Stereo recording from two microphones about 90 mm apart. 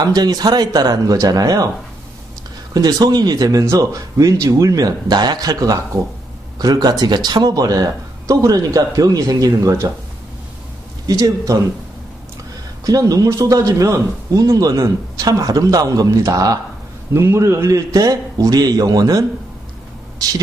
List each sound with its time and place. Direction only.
0.0 s speech: 45° right (ahead or behind)
2.7 s speech: 45° right (ahead or behind)
11.1 s a man's voice: 40° right (ahead or behind)
12.8 s a man's voice: 40° right (ahead or behind)